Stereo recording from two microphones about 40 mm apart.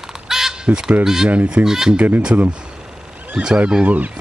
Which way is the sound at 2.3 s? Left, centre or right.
Right.